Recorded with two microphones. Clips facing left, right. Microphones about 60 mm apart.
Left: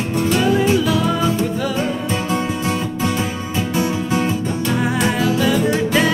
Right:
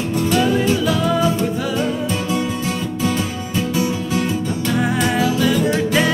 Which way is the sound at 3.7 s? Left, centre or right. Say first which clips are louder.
Left 2 dB; left.